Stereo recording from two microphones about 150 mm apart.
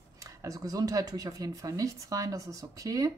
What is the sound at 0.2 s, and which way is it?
Speech, 20° right (ahead or behind).